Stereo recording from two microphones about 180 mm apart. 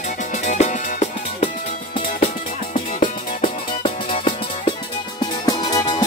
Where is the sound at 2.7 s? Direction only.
35° left (ahead or behind).